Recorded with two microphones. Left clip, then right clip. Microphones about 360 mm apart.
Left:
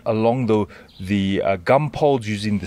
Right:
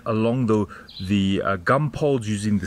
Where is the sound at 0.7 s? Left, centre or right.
Centre.